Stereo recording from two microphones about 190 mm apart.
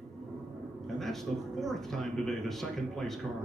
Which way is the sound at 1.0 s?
Centre (ahead or behind).